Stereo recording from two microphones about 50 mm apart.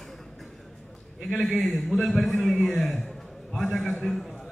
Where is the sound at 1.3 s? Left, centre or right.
Centre.